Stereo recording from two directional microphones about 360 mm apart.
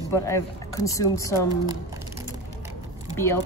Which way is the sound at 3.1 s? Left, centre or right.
Centre.